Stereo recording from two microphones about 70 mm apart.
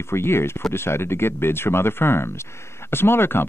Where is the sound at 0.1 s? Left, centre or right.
Left.